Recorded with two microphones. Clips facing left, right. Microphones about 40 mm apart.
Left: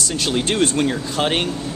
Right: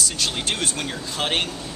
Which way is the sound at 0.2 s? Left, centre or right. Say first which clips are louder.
Left 9 dB; centre.